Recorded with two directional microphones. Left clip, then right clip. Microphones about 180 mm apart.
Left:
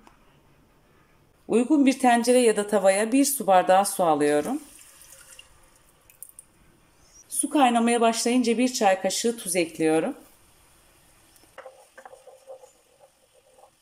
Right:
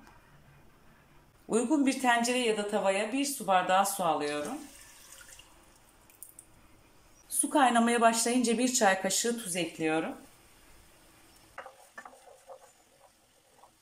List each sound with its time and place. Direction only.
1.5 s a woman's voice: 15° left (ahead or behind)
2.1 s speech: 35° left (ahead or behind)
7.3 s a woman's voice: 15° left (ahead or behind)
9.8 s speech: 35° left (ahead or behind)